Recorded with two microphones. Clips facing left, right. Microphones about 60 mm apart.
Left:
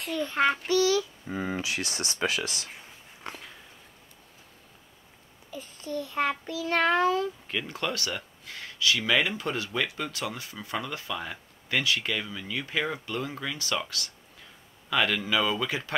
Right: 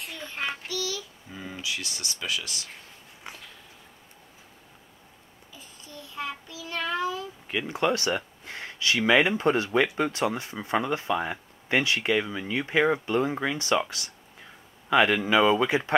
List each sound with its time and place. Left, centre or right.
0.0 s a child's voice: left
0.7 s speech: left
5.5 s a child's voice: left
7.4 s speech: centre